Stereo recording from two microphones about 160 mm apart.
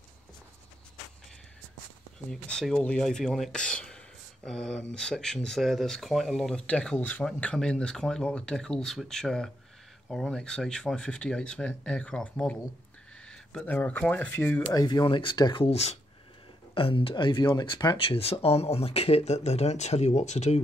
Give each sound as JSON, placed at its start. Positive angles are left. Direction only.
{"t": 2.5, "sound": "speech", "side_deg": 5}
{"t": 14.6, "sound": "speech", "side_deg": 25}
{"t": 15.6, "sound": "speech", "side_deg": 40}